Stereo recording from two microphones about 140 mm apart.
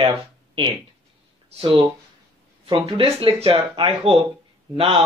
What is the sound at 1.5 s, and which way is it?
Speech, 35° right (ahead or behind).